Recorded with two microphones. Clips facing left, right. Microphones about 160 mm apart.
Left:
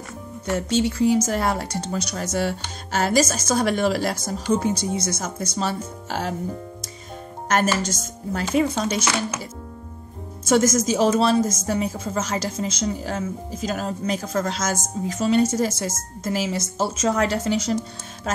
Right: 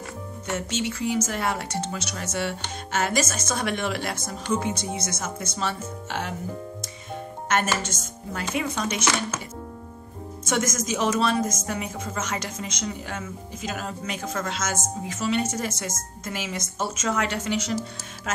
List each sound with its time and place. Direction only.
0.5 s a woman's voice: 35° left (ahead or behind)
7.4 s a woman's voice: 40° left (ahead or behind)
10.4 s a woman's voice: 35° left (ahead or behind)